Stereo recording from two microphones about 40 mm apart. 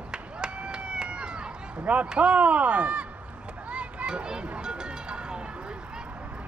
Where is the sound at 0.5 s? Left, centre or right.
Right.